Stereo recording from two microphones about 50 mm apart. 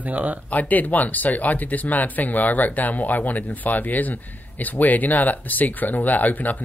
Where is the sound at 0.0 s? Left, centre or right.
Right.